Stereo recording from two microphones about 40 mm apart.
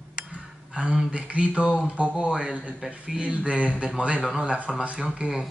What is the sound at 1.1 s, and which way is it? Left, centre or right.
Speech, right.